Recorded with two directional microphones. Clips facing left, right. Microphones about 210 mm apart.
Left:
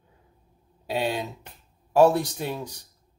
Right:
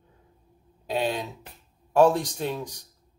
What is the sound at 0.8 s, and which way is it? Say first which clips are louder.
A man's voice: even; 5° left (ahead or behind).